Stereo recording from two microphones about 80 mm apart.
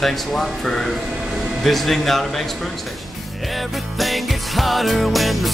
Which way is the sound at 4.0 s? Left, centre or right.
Centre.